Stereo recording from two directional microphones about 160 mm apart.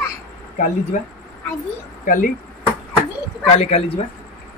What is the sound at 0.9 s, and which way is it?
Speech, 50° left (ahead or behind).